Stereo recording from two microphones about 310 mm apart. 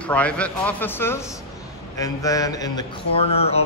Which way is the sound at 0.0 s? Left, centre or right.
Centre.